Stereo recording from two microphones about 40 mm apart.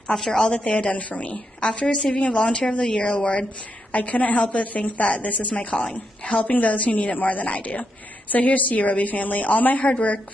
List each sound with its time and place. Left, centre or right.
0.1 s a woman's voice: centre
0.5 s a woman's voice: left
3.9 s a woman's voice: left